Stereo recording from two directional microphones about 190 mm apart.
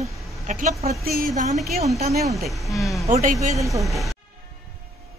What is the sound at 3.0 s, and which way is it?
Speech, 40° right (ahead or behind).